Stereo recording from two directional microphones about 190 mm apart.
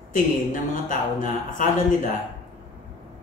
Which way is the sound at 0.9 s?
45° left (ahead or behind).